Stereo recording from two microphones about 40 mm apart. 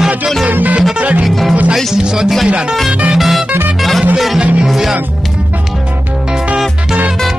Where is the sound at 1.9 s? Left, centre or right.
Centre.